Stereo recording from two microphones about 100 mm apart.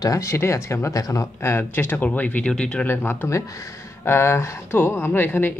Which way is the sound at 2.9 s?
20° left (ahead or behind).